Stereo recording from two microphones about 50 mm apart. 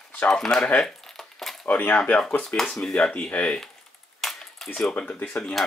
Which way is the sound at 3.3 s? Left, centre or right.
Left.